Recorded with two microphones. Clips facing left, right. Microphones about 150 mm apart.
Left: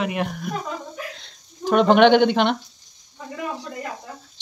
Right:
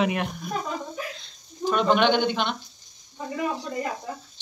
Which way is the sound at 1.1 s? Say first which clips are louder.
Right 3 dB; 70° left (ahead or behind).